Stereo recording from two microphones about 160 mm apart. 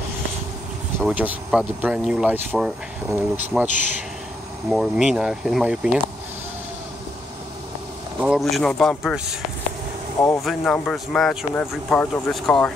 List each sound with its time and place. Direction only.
1.0 s speech: 5° right (ahead or behind)
8.2 s speech: 5° right (ahead or behind)
10.4 s speech: centre (ahead or behind)